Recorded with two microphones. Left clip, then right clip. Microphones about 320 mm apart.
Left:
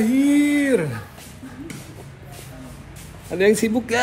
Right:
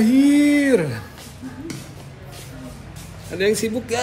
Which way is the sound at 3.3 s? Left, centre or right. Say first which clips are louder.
Left 2 dB; left.